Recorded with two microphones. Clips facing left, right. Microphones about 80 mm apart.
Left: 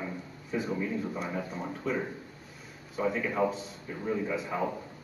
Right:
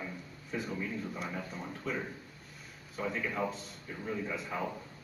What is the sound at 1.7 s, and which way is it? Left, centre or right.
Speech, centre.